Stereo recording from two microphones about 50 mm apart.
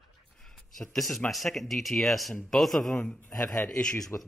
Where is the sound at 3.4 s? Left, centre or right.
Left.